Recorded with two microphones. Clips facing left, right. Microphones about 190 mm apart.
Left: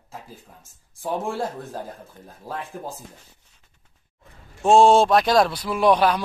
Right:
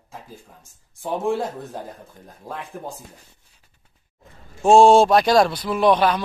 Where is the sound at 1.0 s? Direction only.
Centre (ahead or behind).